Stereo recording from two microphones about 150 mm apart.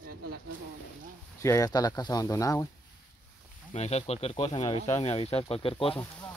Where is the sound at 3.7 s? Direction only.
45° left (ahead or behind).